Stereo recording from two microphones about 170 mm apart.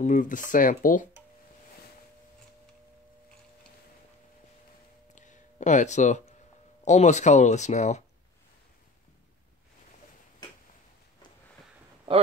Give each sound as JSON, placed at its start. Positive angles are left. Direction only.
{"t": 0.0, "sound": "speech", "side_deg": 50}
{"t": 5.1, "sound": "a sound", "side_deg": 45}
{"t": 6.8, "sound": "speech", "side_deg": 45}
{"t": 12.1, "sound": "speech", "side_deg": -30}